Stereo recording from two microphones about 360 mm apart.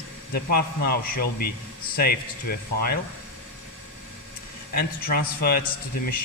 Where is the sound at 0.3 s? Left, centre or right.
Left.